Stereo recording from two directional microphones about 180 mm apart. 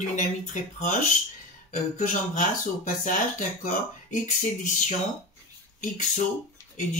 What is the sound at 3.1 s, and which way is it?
Speech, 40° left (ahead or behind).